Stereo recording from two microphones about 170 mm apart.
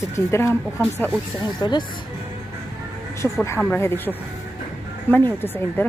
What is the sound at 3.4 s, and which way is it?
Speech, 15° left (ahead or behind).